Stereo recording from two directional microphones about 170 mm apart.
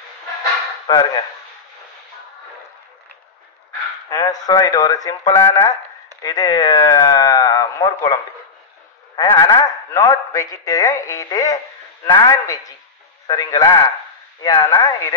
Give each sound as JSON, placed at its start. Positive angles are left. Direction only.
{"t": 0.8, "sound": "speech", "side_deg": 25}
{"t": 4.1, "sound": "a man's voice", "side_deg": 20}